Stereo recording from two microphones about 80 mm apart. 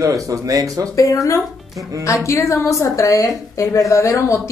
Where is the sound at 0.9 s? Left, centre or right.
Left.